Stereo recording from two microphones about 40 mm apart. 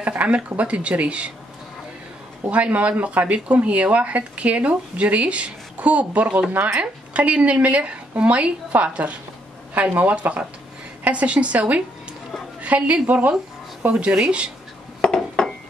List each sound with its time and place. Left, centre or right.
0.0 s speech: right
2.5 s speech: right
15.0 s dishes: left